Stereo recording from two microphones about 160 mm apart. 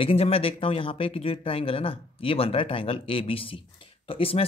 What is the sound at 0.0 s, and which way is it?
Speech, 35° left (ahead or behind).